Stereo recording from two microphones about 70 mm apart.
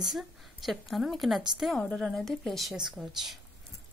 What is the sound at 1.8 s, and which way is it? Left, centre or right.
A woman's voice, centre.